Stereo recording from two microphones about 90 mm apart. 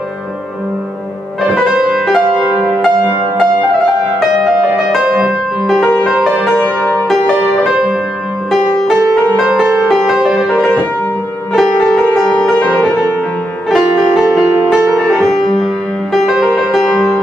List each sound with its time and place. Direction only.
1.5 s music: 5° right (ahead or behind)
5.0 s music: 10° right (ahead or behind)
6.6 s music: 20° left (ahead or behind)
8.5 s music: centre (ahead or behind)
13.7 s music: 5° left (ahead or behind)